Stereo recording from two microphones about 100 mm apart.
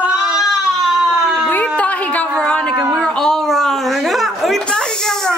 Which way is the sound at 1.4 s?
15° left (ahead or behind).